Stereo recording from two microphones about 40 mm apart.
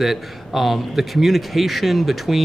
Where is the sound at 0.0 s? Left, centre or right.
Centre.